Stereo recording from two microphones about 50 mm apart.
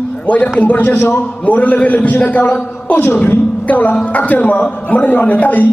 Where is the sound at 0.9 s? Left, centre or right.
Left.